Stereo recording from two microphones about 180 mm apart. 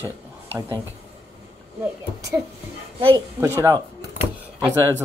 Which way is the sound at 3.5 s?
15° right (ahead or behind).